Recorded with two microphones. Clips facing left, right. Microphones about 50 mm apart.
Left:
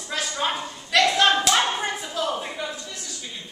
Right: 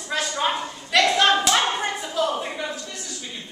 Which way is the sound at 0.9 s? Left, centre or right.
Centre.